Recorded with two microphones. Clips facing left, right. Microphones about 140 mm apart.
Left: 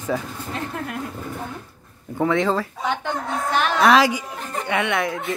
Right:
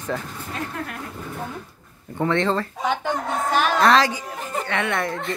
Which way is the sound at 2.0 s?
5° left (ahead or behind).